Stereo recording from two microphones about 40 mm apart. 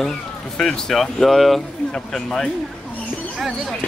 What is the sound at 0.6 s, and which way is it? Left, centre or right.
Speech, centre.